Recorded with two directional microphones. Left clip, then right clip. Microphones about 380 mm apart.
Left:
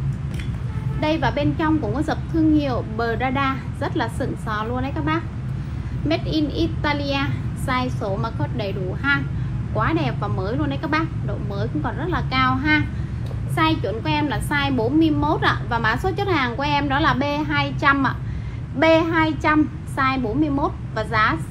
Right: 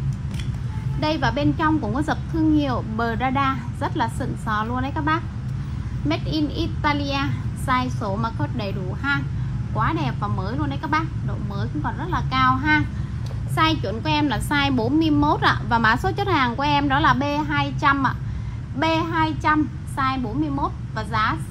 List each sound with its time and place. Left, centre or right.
1.0 s a child's voice: right